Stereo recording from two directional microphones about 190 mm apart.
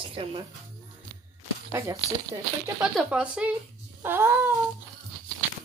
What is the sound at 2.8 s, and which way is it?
Speech, 5° right (ahead or behind).